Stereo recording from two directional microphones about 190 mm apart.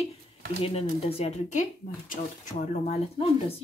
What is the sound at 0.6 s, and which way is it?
Speech, 30° left (ahead or behind).